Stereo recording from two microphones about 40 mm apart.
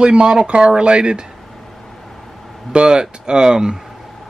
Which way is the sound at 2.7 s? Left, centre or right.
Right.